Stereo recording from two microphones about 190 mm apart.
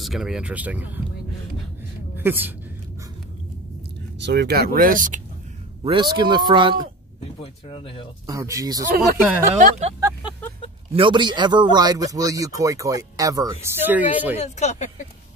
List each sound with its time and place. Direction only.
0.0 s speech: centre (ahead or behind)
2.1 s a woman's voice: 10° right (ahead or behind)
4.2 s speech: 65° right (ahead or behind); by 5.2 s 45° right (ahead or behind)
5.9 s speech: 25° right (ahead or behind)
7.6 s speech: 30° left (ahead or behind)
8.3 s speech: 15° right (ahead or behind)
8.8 s speech: 50° right (ahead or behind)
10.9 s speech: 25° right (ahead or behind); by 14.4 s 10° right (ahead or behind)
14.4 s speech: 35° left (ahead or behind)